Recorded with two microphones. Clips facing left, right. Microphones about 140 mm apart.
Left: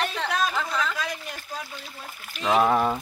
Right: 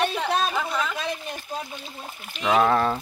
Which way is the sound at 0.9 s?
25° right (ahead or behind).